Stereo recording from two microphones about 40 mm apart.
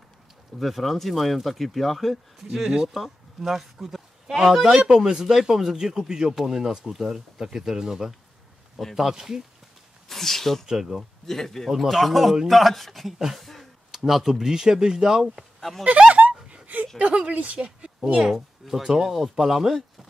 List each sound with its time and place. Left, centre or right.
0.6 s a man's voice: centre
10.0 s speech: centre
10.7 s speech: centre
11.2 s speech: centre
11.7 s speech: centre
13.9 s speech: centre
16.1 s a sound: right
17.2 s speech: right
17.6 s a sound: right
18.1 s speech: centre
19.0 s speech: centre